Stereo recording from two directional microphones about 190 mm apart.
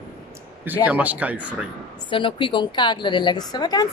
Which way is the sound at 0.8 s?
10° right (ahead or behind).